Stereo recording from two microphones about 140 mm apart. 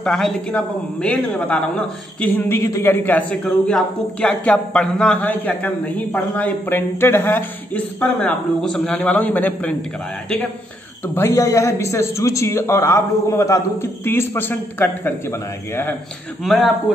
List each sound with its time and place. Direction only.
0.0 s a man's voice: 5° left (ahead or behind)
11.1 s speech: 20° left (ahead or behind)
16.4 s a man's voice: centre (ahead or behind)